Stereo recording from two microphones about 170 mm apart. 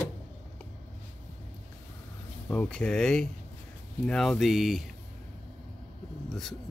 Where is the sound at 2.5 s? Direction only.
5° left (ahead or behind).